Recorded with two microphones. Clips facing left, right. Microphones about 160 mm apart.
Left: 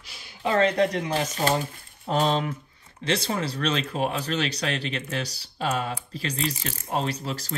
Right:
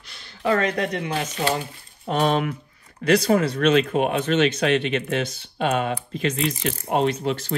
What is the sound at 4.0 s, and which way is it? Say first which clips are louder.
Speech: right 7 dB; 35° left (ahead or behind).